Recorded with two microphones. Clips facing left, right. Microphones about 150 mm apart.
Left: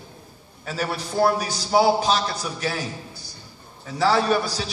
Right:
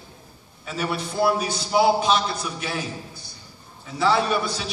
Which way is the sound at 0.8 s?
35° left (ahead or behind).